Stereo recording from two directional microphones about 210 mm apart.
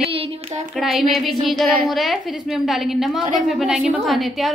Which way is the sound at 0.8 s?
Centre (ahead or behind).